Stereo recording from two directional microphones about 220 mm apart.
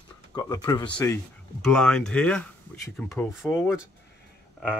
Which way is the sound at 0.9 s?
5° left (ahead or behind).